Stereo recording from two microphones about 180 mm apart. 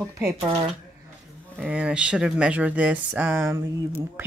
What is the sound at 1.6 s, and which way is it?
A woman's voice, 5° right (ahead or behind).